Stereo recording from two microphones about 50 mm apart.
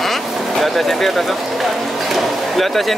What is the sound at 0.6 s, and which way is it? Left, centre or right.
Speech, centre.